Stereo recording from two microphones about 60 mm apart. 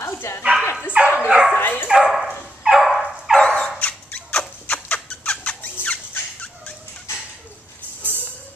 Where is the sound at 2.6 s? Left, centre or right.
Centre.